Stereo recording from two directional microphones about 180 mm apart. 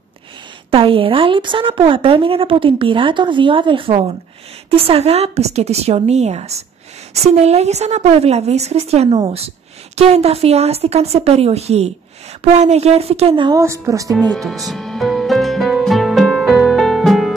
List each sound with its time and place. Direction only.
0.7 s a woman's voice: 30° right (ahead or behind)
14.3 s music: centre (ahead or behind)